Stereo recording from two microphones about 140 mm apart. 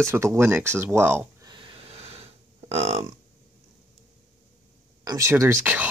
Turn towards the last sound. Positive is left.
turn(degrees=-10)  # may be behind; listen again after turning